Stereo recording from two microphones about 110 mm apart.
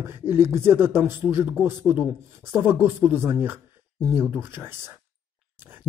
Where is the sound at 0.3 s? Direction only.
20° right (ahead or behind).